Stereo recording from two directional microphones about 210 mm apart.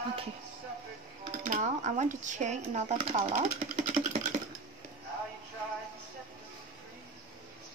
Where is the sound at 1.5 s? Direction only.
35° right (ahead or behind).